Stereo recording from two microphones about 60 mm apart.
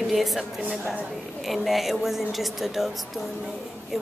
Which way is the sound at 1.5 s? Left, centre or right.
Centre.